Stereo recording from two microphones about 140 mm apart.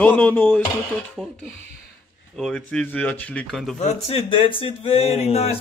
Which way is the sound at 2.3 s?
5° left (ahead or behind).